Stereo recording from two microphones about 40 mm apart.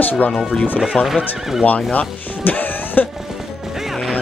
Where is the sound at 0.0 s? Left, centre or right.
Left.